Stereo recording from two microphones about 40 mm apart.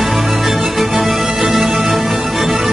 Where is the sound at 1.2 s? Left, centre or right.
Right.